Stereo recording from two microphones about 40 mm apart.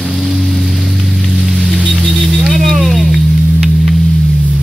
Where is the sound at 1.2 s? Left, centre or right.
Centre.